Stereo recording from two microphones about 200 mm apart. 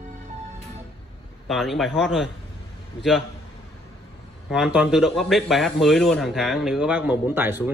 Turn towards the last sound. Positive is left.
turn(degrees=-10)  # may be behind; listen again after turning